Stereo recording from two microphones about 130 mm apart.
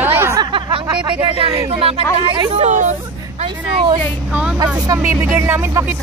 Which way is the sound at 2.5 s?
70° right (ahead or behind).